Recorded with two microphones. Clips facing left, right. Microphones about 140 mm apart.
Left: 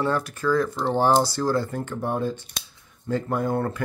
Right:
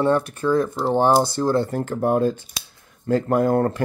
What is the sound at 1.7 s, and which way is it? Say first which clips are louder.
Speech: right 7 dB; 45° right (ahead or behind).